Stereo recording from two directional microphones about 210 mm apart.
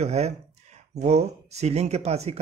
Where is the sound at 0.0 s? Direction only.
30° right (ahead or behind).